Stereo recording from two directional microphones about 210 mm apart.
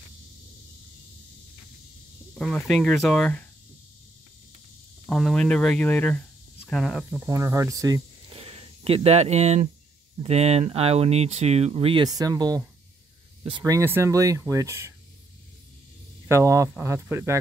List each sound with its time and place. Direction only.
2.3 s speech: centre (ahead or behind)
5.0 s speech: centre (ahead or behind); by 8.4 s 15° right (ahead or behind)
8.4 s speech: 25° right (ahead or behind)
16.3 s speech: 15° right (ahead or behind)